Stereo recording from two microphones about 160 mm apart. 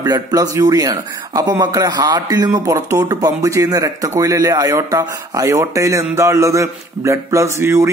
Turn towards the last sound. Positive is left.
turn(degrees=-15)  # may be behind; listen again after turning